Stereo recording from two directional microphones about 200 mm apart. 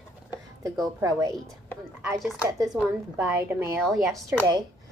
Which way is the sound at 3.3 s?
10° right (ahead or behind).